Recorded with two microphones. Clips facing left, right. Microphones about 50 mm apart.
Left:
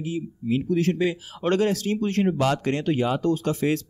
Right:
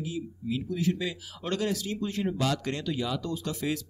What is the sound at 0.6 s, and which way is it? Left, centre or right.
Speech, left.